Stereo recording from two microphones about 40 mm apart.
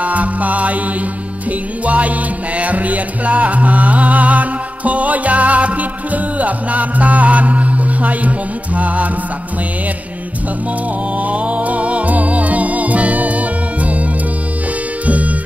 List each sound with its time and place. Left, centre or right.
0.0 s music: right
1.9 s music: right
11.1 s music: right
15.0 s music: right